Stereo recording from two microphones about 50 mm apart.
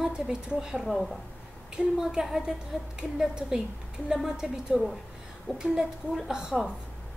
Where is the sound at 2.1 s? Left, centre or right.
Centre.